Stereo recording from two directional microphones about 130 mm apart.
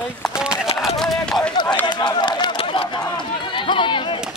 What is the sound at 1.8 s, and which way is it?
Run, 35° left (ahead or behind).